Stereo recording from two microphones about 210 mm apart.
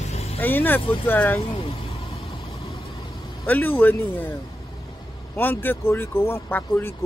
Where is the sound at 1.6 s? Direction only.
30° left (ahead or behind).